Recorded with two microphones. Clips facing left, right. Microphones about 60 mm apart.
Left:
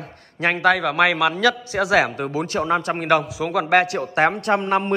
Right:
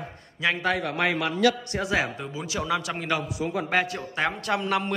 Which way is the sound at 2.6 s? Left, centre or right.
Left.